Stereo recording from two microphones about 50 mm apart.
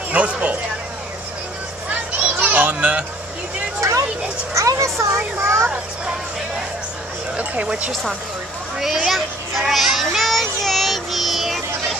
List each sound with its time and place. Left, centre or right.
0.1 s a sound: right
1.9 s children playing: right
4.6 s a child's voice: right
7.3 s speech: right
7.9 s a woman's voice: centre
8.7 s a child's voice: centre
9.1 s children playing: centre